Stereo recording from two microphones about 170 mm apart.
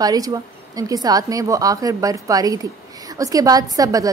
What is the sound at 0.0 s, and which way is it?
A woman's voice, 20° right (ahead or behind).